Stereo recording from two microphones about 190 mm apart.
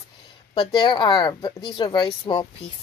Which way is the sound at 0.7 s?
25° left (ahead or behind).